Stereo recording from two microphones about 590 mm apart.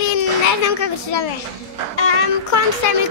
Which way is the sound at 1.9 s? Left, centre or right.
Left.